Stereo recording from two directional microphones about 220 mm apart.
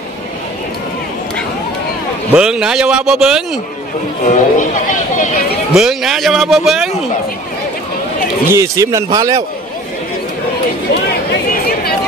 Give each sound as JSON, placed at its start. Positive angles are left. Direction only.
{"t": 2.3, "sound": "a man's voice", "side_deg": -5}
{"t": 4.3, "sound": "speech", "side_deg": 35}
{"t": 5.8, "sound": "a man's voice", "side_deg": 0}
{"t": 8.5, "sound": "a man's voice", "side_deg": -15}